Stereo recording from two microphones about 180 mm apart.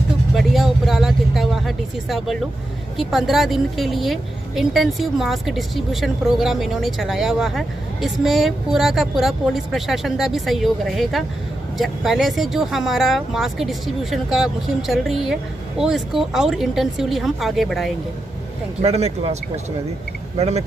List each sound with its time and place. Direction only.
0.4 s vehicle: centre (ahead or behind)
3.0 s a woman's voice: centre (ahead or behind)
18.8 s speech: 35° right (ahead or behind)